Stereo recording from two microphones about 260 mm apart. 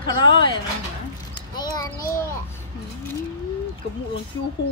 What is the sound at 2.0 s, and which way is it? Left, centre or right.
Speech, left.